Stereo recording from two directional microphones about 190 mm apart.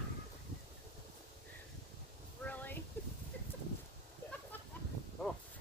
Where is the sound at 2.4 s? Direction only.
10° left (ahead or behind).